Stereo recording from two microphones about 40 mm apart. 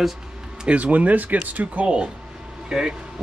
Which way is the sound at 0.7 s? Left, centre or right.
Right.